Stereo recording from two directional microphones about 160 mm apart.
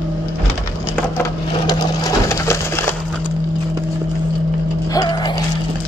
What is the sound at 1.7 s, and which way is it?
Sewing machine, 25° left (ahead or behind).